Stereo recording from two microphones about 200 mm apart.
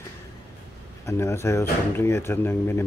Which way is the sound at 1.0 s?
15° left (ahead or behind).